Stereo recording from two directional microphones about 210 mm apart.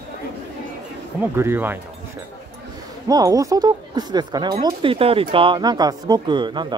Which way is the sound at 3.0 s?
15° right (ahead or behind).